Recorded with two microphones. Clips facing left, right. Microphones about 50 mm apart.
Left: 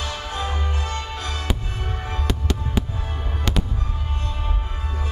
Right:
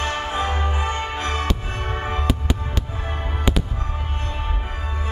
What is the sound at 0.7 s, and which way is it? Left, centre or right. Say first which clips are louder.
Music: right 4 dB; right.